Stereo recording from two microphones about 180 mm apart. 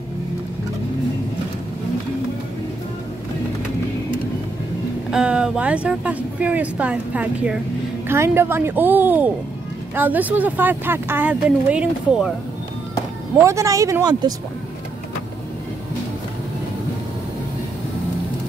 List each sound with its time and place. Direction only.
5.1 s speech: 5° right (ahead or behind)
13.4 s speech: 15° right (ahead or behind)